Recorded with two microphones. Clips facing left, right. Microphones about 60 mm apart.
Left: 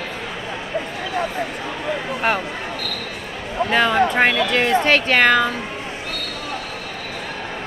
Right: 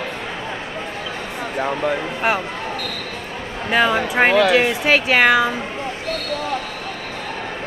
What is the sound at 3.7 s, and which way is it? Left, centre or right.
Speech, centre.